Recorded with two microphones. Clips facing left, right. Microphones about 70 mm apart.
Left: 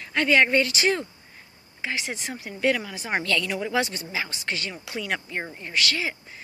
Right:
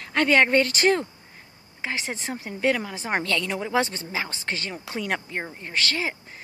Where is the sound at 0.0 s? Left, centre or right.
Right.